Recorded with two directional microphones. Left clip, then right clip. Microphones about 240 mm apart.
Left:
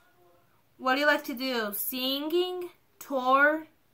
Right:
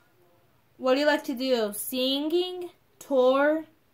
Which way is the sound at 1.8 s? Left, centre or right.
Left.